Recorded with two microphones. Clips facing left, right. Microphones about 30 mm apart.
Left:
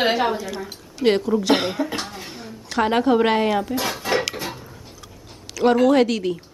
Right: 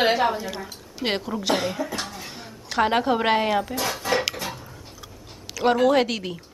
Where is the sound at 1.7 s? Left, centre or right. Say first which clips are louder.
Left 4 dB; left.